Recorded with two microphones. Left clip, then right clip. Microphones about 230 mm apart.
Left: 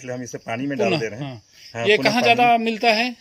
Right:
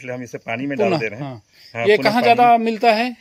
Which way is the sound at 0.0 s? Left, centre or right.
Centre.